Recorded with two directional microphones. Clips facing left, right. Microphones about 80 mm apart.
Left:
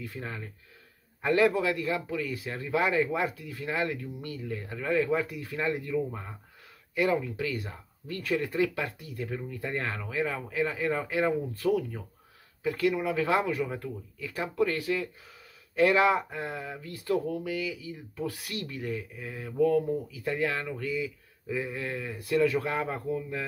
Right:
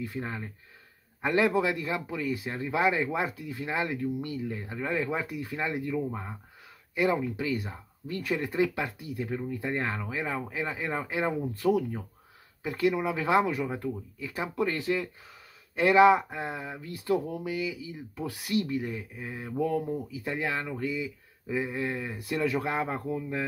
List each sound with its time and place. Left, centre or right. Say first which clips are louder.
0.0 s speech: right 3 dB; right
7.3 s speech: right 2 dB; centre